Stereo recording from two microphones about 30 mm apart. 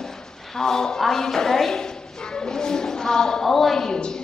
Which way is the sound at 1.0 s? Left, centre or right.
Centre.